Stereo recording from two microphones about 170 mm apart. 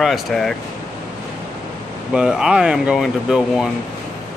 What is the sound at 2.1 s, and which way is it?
Speech, 5° right (ahead or behind).